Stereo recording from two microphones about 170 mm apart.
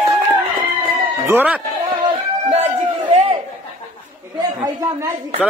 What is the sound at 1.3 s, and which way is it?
Speech, 10° right (ahead or behind).